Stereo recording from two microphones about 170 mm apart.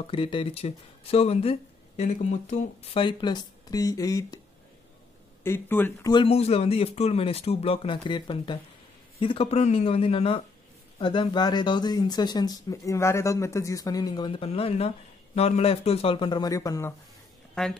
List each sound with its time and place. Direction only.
0.0 s speech: 30° left (ahead or behind)
3.0 s speech: 30° left (ahead or behind)
5.4 s speech: 15° left (ahead or behind)
6.0 s speech: 30° left (ahead or behind)
17.6 s a woman's voice: 5° left (ahead or behind)